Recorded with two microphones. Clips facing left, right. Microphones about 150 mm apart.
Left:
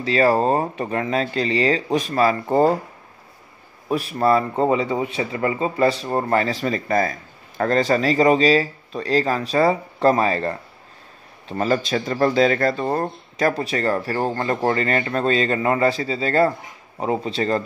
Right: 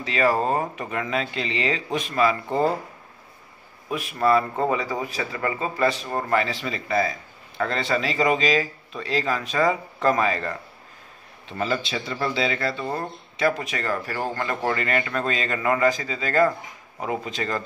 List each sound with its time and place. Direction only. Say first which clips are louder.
0.0 s speech: left 5 dB; 35° left (ahead or behind)
3.9 s speech: left 3 dB; 35° left (ahead or behind)